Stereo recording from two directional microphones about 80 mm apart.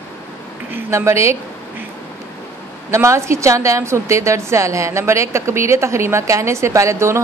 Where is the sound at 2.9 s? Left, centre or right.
Right.